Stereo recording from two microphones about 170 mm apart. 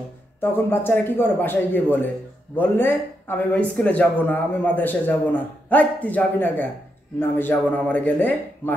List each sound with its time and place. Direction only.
0.4 s speech: 10° left (ahead or behind)